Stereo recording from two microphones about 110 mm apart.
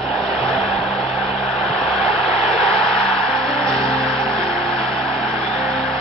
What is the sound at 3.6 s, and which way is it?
Music, centre (ahead or behind).